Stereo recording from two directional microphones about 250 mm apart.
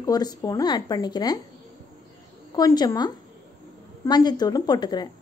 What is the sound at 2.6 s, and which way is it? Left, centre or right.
Speech, centre.